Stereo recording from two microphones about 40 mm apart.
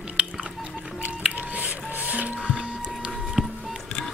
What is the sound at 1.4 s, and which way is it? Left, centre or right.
Music, right.